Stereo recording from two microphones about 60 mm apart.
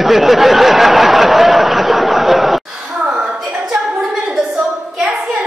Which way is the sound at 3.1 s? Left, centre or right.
Centre.